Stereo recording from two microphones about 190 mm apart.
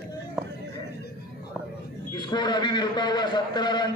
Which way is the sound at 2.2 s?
20° left (ahead or behind).